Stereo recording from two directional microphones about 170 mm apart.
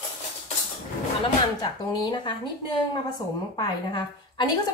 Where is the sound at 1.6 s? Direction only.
25° left (ahead or behind).